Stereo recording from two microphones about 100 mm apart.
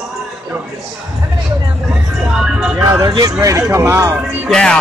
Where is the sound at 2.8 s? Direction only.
35° right (ahead or behind).